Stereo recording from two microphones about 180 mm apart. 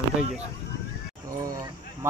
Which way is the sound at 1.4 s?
20° right (ahead or behind).